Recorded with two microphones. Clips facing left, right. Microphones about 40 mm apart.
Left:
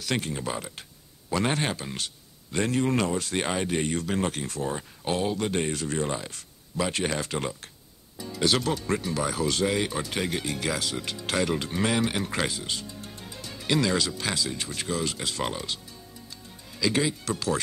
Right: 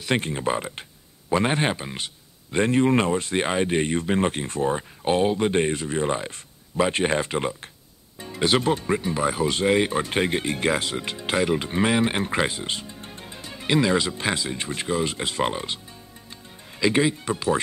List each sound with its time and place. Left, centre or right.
0.0 s speech: right